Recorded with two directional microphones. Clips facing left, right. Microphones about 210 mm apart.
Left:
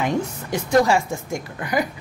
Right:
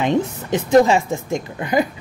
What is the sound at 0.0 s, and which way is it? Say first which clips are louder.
A woman's voice: right 4 dB; 20° right (ahead or behind).